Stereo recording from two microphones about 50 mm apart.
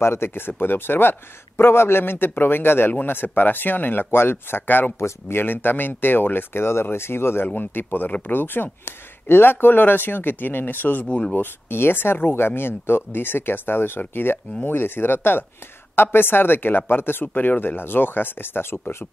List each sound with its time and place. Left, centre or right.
0.0 s speech: left
4.9 s speech: left
5.4 s speech: left
11.1 s speech: left
11.3 s speech: left